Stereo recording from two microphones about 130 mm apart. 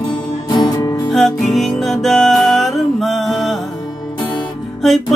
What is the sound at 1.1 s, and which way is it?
Music, centre (ahead or behind).